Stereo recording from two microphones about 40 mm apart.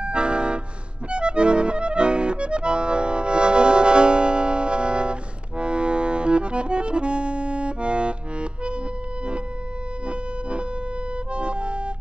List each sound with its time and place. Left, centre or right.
0.0 s music: right
1.1 s accordion: right
11.3 s organ: right